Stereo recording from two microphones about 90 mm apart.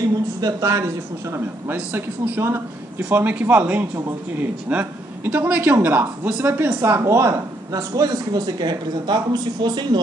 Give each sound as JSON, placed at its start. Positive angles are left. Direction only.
{"t": 0.4, "sound": "a woman's voice", "side_deg": -40}
{"t": 1.9, "sound": "speech", "side_deg": -20}